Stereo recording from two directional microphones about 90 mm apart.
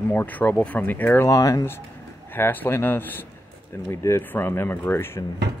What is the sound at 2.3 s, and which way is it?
Speech, 20° left (ahead or behind).